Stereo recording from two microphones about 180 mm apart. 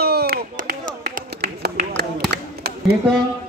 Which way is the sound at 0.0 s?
60° right (ahead or behind).